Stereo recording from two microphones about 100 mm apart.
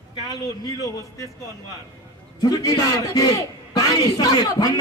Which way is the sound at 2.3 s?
40° left (ahead or behind).